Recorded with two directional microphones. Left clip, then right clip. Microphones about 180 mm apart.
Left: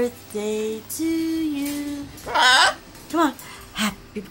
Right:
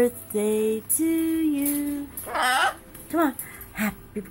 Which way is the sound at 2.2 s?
25° left (ahead or behind).